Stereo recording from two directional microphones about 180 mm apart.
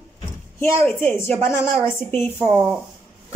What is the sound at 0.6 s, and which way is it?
A woman's voice, 10° left (ahead or behind).